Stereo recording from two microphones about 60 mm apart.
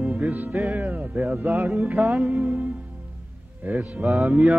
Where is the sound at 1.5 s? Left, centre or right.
Right.